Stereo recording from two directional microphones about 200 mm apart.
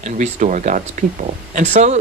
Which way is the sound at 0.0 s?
35° right (ahead or behind).